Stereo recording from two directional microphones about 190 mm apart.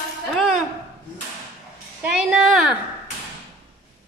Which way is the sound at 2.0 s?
5° right (ahead or behind).